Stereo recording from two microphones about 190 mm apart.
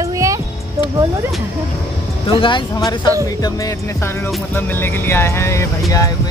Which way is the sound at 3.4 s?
20° left (ahead or behind).